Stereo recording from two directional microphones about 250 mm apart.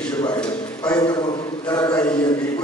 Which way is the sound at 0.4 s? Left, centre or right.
Centre.